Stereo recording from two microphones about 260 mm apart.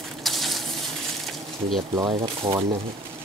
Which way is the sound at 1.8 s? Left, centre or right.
Centre.